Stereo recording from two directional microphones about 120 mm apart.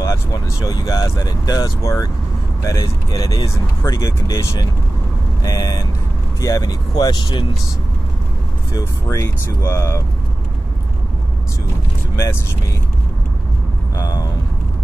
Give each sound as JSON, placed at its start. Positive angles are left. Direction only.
{"t": 0.0, "sound": "speech", "side_deg": 25}
{"t": 8.7, "sound": "speech", "side_deg": 25}
{"t": 13.9, "sound": "speech", "side_deg": 30}